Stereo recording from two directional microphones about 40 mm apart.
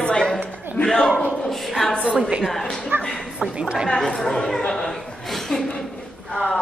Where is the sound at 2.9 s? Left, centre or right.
Right.